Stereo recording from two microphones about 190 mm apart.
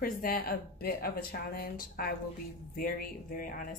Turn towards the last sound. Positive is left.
turn(degrees=50)  # may be behind; listen again after turning